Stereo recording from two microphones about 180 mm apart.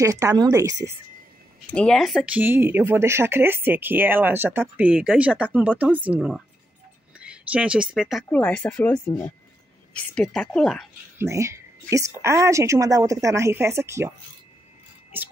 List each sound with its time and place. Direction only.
0.0 s speech: 20° right (ahead or behind)
1.7 s speech: 5° left (ahead or behind)
2.4 s speech: 10° right (ahead or behind)
8.3 s speech: 10° left (ahead or behind)
11.1 s speech: 15° right (ahead or behind)